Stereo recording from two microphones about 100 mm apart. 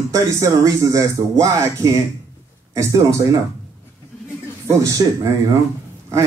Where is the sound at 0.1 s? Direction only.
35° right (ahead or behind).